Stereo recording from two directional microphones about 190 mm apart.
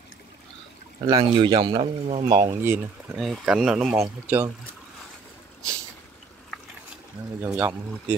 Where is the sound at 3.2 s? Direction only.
Centre (ahead or behind).